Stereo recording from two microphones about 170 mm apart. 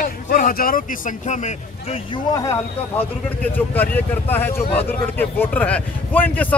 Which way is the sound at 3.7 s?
10° left (ahead or behind).